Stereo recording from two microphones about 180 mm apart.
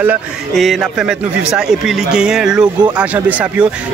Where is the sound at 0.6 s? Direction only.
Centre (ahead or behind).